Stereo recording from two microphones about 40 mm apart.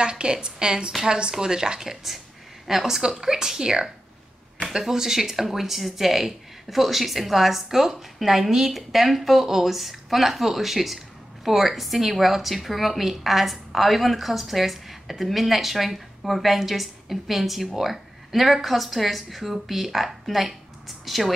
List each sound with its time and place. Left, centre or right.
0.0 s a woman's voice: right; by 21.3 s centre